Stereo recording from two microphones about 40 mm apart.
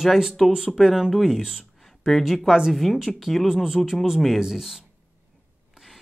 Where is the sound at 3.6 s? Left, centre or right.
Centre.